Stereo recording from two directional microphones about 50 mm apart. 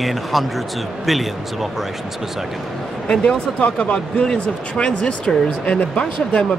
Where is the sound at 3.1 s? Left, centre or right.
Centre.